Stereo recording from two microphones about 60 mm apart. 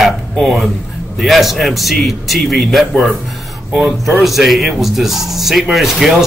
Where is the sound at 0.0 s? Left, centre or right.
Centre.